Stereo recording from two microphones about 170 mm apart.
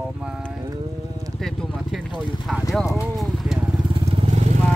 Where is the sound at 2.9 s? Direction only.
Centre (ahead or behind).